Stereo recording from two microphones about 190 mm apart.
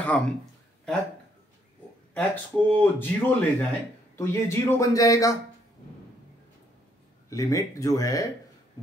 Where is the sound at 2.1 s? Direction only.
10° left (ahead or behind).